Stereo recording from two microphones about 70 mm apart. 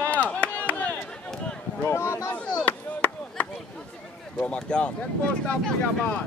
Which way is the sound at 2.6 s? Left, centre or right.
Left.